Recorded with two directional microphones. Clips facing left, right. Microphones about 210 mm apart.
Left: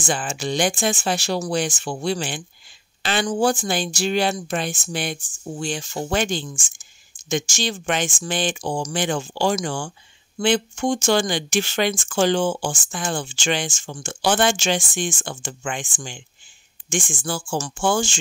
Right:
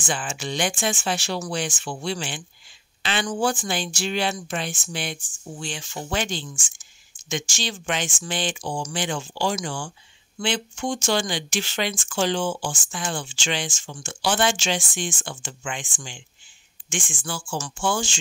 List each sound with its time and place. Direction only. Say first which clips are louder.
0.0 s speech: left 4 dB; 40° left (ahead or behind)